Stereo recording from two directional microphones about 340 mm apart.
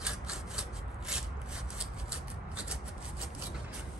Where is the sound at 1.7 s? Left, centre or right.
Centre.